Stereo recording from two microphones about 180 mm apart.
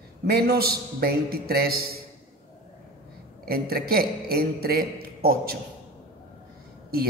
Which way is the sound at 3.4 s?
55° right (ahead or behind).